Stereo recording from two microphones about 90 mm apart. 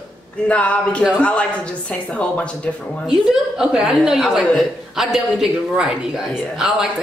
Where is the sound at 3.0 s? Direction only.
5° right (ahead or behind).